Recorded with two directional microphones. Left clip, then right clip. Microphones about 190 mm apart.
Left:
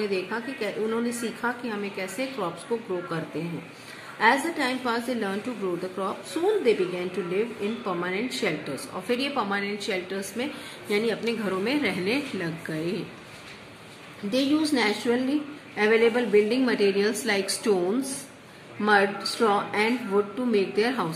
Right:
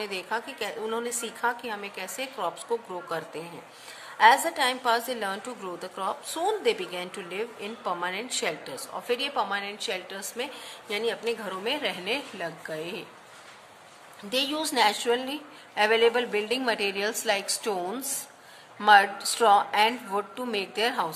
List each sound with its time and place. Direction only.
0.0 s a woman's voice: 45° right (ahead or behind)
4.2 s speech: 40° right (ahead or behind)
14.3 s speech: 45° right (ahead or behind)